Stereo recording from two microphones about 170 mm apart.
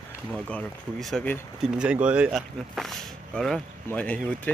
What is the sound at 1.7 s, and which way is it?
Speech, 5° right (ahead or behind).